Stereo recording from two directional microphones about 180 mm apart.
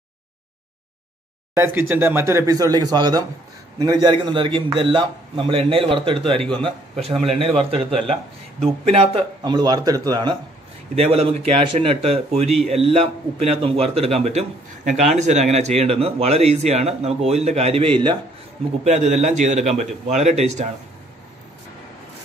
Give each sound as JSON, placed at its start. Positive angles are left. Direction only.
{"t": 1.5, "sound": "a man's voice", "side_deg": -15}
{"t": 11.0, "sound": "speech", "side_deg": -35}
{"t": 18.9, "sound": "speech", "side_deg": -40}